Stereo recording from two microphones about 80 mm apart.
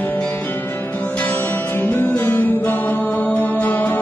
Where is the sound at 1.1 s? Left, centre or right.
Left.